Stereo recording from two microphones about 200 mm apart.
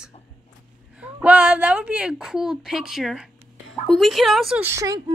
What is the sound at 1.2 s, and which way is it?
A woman's voice, 5° right (ahead or behind).